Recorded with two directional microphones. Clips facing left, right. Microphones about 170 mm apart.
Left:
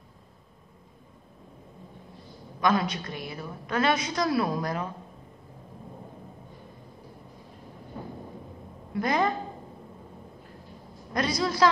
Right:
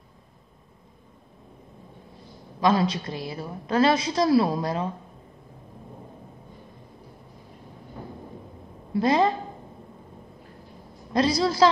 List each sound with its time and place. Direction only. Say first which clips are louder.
2.6 s a woman's voice: right 3 dB; 30° right (ahead or behind)
8.9 s a woman's voice: right 5 dB; 30° right (ahead or behind)
11.1 s a woman's voice: right 5 dB; 30° right (ahead or behind)